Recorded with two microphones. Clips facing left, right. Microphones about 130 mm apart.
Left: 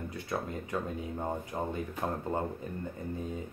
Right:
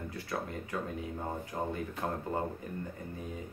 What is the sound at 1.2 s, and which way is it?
Speech, 20° left (ahead or behind).